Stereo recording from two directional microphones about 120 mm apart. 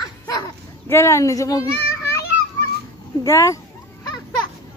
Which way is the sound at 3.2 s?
25° left (ahead or behind).